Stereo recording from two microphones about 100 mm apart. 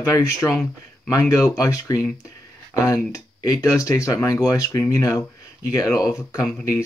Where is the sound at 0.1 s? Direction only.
30° left (ahead or behind).